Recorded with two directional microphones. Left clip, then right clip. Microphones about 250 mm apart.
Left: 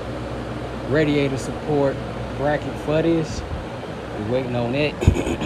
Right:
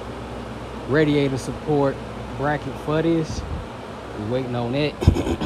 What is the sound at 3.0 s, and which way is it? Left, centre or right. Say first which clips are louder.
Speech: even; right.